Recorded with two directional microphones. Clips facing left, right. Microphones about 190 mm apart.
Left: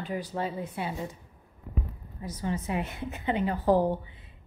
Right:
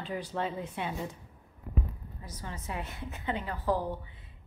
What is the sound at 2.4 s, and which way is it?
Speech, 15° left (ahead or behind).